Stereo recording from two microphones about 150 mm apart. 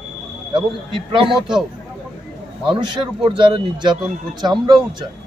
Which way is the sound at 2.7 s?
30° right (ahead or behind).